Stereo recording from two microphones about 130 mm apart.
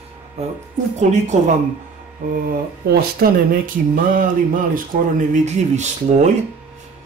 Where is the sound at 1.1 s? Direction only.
65° right (ahead or behind).